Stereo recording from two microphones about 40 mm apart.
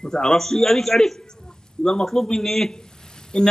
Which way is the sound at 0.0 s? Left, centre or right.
Centre.